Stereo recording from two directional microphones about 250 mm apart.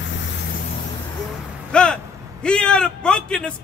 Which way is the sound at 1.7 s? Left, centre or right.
Centre.